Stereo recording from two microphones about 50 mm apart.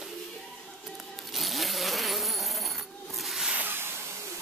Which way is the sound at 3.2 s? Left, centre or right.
Centre.